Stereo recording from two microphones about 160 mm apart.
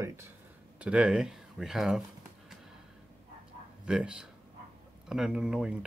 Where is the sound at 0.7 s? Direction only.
5° right (ahead or behind).